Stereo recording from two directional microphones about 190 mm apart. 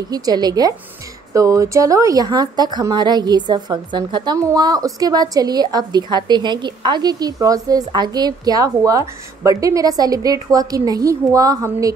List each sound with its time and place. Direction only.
0.1 s speech: 20° right (ahead or behind)